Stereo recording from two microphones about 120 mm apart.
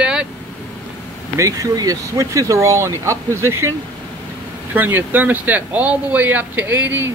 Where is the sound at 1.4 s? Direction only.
30° right (ahead or behind).